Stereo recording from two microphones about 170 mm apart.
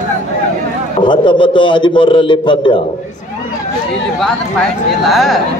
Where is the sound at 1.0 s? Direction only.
30° left (ahead or behind).